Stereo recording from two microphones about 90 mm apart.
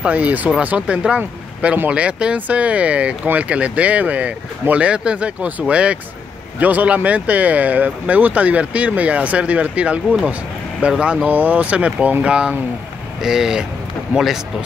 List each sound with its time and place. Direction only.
0.0 s speech: 15° right (ahead or behind)